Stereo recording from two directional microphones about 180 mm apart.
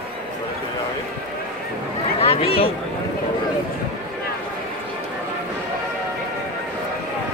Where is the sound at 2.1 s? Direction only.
30° left (ahead or behind).